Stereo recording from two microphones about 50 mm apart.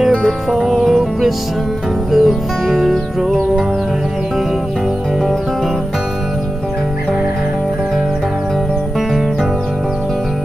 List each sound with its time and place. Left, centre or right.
0.5 s music: centre